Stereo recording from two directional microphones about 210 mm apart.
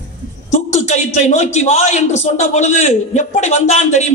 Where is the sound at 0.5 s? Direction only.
35° left (ahead or behind).